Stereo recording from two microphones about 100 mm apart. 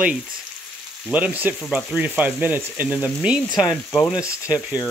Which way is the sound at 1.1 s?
15° right (ahead or behind).